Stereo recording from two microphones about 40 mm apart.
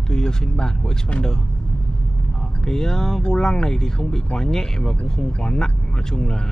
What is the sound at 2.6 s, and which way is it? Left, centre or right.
Speech, centre.